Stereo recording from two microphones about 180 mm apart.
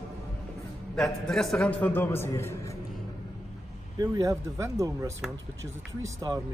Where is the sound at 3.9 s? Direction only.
20° right (ahead or behind).